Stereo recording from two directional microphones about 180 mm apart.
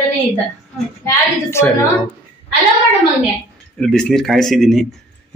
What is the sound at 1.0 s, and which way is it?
Speech, 15° left (ahead or behind).